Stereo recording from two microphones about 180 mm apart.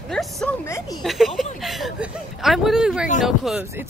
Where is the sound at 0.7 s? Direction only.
20° left (ahead or behind).